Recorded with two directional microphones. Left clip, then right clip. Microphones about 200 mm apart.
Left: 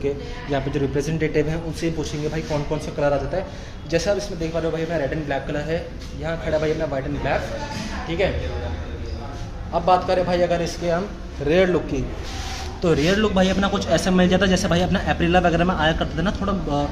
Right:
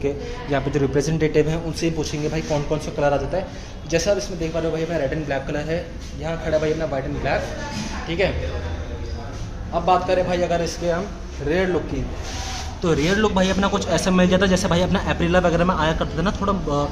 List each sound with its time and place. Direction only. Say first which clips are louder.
0.0 s a man's voice: right 1 dB; 10° right (ahead or behind)
9.8 s a man's voice: even; 10° left (ahead or behind)
11.4 s a man's voice: left 4 dB; 25° left (ahead or behind)
12.8 s a man's voice: even; centre (ahead or behind)